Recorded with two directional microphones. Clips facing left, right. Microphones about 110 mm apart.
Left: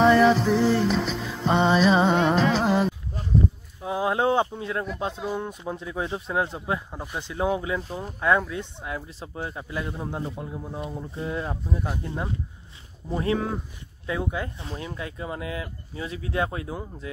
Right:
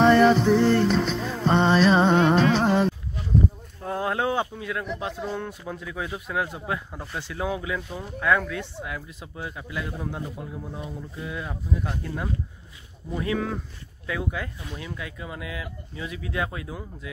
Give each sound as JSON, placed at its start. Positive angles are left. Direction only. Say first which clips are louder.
{"t": 0.0, "sound": "music", "louder": "right 1 dB", "side_deg": 0}
{"t": 3.8, "sound": "a sound", "louder": "left 2 dB", "side_deg": 10}
{"t": 4.1, "sound": "speech", "louder": "left 4 dB", "side_deg": 25}
{"t": 5.2, "sound": "speech", "louder": "left 2 dB", "side_deg": 15}
{"t": 6.9, "sound": "speech", "louder": "left 1 dB", "side_deg": 15}